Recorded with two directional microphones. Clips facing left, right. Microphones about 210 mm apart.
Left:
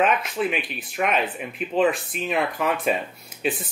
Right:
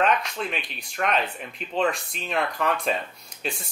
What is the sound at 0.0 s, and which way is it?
Speech, 5° left (ahead or behind).